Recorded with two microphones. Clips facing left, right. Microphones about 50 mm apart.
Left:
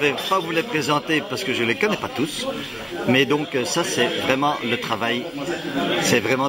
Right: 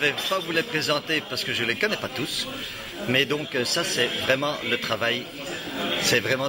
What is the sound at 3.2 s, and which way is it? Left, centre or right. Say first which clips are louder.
Speech: left 5 dB; left.